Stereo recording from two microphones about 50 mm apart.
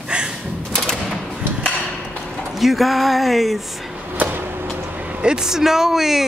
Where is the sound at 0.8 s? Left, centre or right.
Centre.